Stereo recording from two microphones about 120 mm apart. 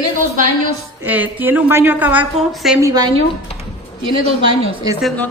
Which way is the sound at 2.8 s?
30° right (ahead or behind).